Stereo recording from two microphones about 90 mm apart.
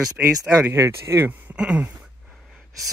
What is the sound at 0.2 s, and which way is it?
Speech, 15° right (ahead or behind).